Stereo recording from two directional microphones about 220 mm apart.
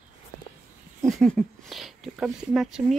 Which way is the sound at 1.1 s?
5° left (ahead or behind).